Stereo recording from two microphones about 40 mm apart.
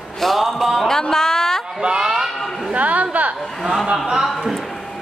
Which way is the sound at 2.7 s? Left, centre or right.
Right.